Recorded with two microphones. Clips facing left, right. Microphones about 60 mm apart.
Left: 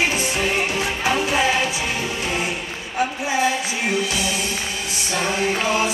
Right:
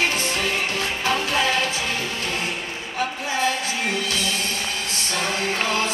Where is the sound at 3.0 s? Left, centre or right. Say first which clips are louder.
Left 4 dB; centre.